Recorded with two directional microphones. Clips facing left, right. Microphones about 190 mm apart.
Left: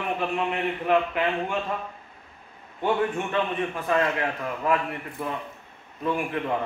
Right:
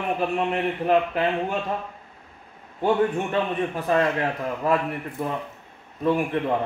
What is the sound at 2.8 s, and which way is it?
A man's voice, 35° right (ahead or behind).